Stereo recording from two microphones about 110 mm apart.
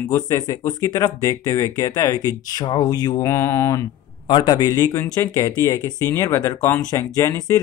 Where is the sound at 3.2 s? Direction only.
25° left (ahead or behind).